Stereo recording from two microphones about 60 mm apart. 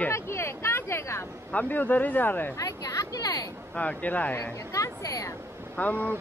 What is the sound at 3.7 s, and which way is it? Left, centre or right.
Speech, left.